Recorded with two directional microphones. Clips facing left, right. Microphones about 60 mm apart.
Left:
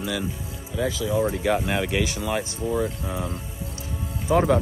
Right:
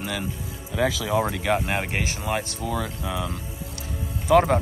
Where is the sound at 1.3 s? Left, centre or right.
Right.